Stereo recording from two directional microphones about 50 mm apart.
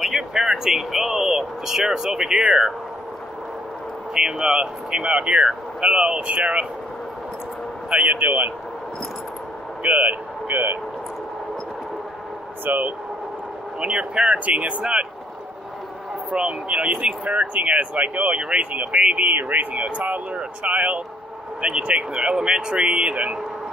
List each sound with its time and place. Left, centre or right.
0.0 s vehicle: centre
4.1 s speech: centre
8.1 s speech: right
9.8 s speech: right
12.6 s speech: right
13.7 s speech: centre
16.3 s speech: right
19.2 s speech: right